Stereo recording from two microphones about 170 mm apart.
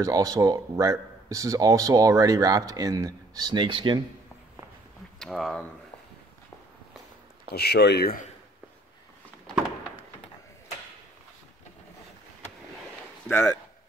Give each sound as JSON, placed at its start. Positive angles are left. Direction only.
{"t": 0.0, "sound": "speech", "side_deg": -20}
{"t": 5.2, "sound": "speech", "side_deg": 0}
{"t": 7.5, "sound": "speech", "side_deg": 75}
{"t": 13.3, "sound": "speech", "side_deg": 5}